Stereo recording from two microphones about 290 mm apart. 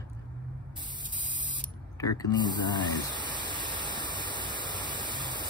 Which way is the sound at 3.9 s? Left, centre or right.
Centre.